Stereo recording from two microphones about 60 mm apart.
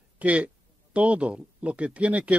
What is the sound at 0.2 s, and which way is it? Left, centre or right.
Speech, right.